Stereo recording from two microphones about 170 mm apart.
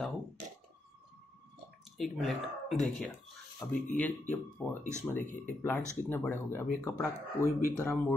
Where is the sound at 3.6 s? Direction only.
15° left (ahead or behind).